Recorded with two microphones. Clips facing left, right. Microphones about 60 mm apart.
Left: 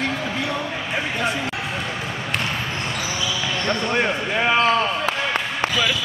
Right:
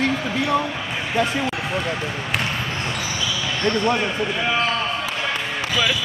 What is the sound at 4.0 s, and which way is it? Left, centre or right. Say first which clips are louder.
Speech: left 2 dB; left.